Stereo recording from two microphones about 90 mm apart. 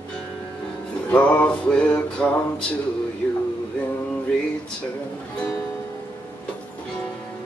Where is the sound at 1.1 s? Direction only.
15° left (ahead or behind).